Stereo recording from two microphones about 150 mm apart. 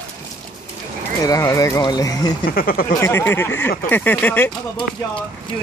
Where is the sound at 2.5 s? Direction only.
75° left (ahead or behind).